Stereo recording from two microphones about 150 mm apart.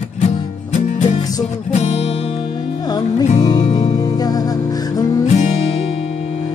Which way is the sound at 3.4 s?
30° left (ahead or behind).